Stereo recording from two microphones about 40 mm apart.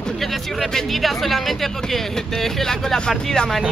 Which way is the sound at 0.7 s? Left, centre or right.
Centre.